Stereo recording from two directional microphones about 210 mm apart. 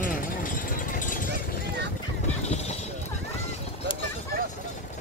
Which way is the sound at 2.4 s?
30° left (ahead or behind).